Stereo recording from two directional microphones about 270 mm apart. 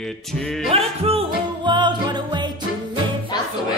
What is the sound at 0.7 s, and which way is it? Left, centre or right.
Music, right.